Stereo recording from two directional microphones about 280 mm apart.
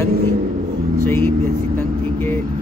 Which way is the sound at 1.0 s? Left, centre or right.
Centre.